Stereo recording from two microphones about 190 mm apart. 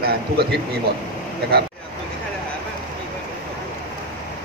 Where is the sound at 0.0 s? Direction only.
60° right (ahead or behind).